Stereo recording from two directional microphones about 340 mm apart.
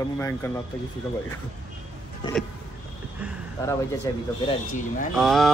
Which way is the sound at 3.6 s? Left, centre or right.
Centre.